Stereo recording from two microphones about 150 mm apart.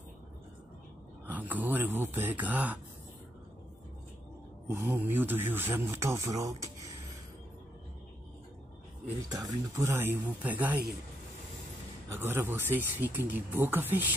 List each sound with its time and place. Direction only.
1.2 s speech: 10° right (ahead or behind)
4.6 s speech: 15° right (ahead or behind)
9.3 s speech: 25° right (ahead or behind)
12.1 s speech: 15° right (ahead or behind)